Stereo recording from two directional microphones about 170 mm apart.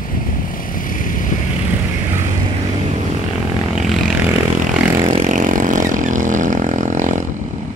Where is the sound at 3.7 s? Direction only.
Centre (ahead or behind).